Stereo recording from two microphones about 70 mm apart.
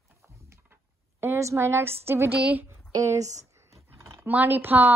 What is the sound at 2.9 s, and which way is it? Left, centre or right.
Speech, right.